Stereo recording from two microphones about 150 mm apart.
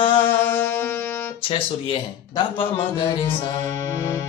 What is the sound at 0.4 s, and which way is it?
Music, 15° left (ahead or behind).